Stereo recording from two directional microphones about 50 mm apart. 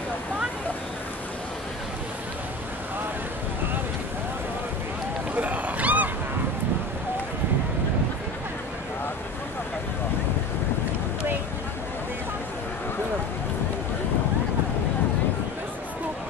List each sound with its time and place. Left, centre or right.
5.3 s cat: right